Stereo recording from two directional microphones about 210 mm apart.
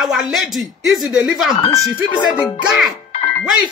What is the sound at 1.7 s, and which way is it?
Speech, 20° left (ahead or behind).